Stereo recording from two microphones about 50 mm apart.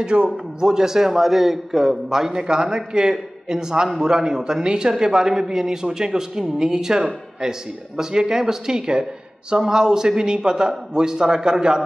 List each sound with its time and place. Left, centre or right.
0.0 s a man's voice: centre